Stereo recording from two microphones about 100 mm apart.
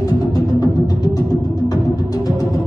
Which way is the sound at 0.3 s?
40° left (ahead or behind).